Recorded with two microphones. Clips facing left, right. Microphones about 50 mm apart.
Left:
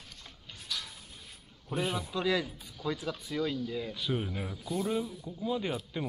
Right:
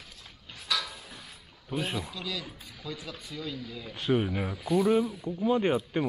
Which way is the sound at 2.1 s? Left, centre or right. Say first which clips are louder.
Left 7 dB; left.